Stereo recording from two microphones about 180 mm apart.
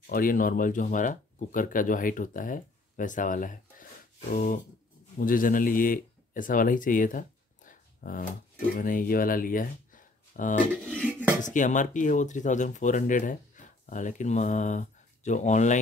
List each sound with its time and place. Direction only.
0.0 s speech: 50° left (ahead or behind)
11.1 s dishes: 10° right (ahead or behind)
11.4 s speech: 45° left (ahead or behind)